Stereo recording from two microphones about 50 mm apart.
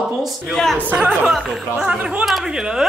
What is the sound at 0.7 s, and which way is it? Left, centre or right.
Speech, right.